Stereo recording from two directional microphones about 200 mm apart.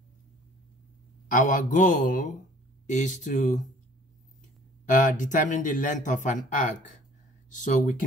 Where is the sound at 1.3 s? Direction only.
40° left (ahead or behind).